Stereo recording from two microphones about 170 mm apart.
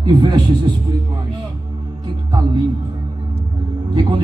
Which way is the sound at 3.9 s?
30° right (ahead or behind).